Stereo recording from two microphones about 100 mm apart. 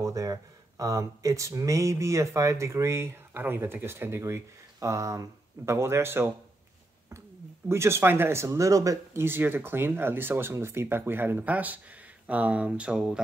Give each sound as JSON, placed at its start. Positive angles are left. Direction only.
{"t": 0.0, "sound": "speech", "side_deg": -35}
{"t": 9.2, "sound": "speech", "side_deg": -20}